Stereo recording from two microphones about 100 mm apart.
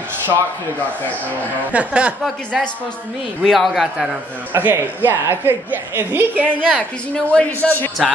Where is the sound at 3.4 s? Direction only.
Centre (ahead or behind).